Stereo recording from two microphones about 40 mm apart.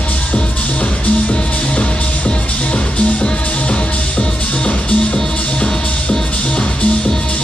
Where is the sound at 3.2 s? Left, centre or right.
Left.